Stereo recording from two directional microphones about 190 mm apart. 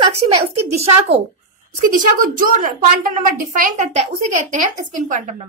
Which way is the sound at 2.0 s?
45° right (ahead or behind).